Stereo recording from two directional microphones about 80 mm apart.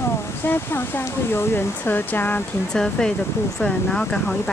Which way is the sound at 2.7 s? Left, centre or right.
Centre.